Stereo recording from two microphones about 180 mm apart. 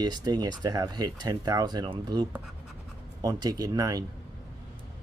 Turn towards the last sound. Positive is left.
turn(degrees=-20)  # may be behind; listen again after turning